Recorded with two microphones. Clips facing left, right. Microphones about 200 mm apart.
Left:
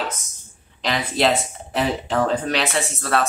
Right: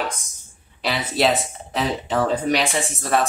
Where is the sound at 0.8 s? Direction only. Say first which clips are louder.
Even; 5° right (ahead or behind).